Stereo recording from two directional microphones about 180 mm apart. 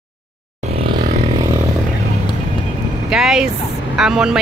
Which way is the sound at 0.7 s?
30° right (ahead or behind).